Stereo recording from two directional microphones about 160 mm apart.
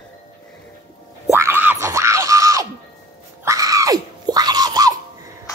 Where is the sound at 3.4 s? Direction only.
20° right (ahead or behind).